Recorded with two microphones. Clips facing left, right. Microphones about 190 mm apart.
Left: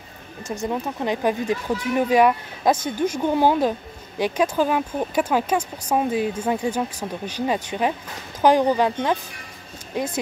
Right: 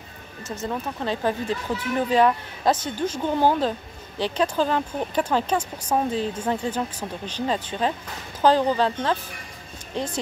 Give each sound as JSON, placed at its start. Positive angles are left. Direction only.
{"t": 0.5, "sound": "speech", "side_deg": 15}